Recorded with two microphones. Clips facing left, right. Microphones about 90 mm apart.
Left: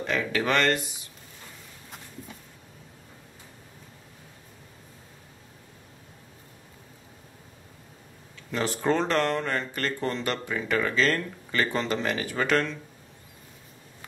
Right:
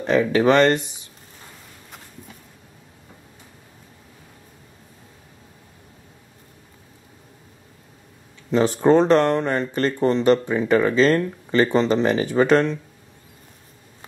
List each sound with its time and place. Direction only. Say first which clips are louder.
0.0 s speech: right 10 dB; 25° right (ahead or behind)
8.5 s speech: right 9 dB; 25° right (ahead or behind)